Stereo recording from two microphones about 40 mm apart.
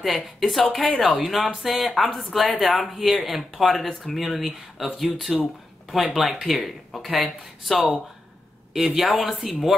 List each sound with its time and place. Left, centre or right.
0.0 s speech: centre